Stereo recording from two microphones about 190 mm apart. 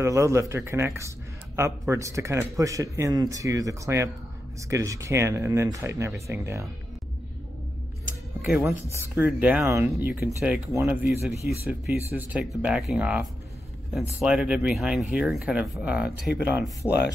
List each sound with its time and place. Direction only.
0.0 s speech: 15° right (ahead or behind)
8.1 s a sound: 10° right (ahead or behind)
9.1 s speech: 10° right (ahead or behind)